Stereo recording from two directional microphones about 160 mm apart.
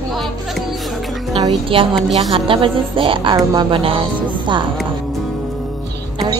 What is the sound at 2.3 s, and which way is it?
Speech, 35° right (ahead or behind).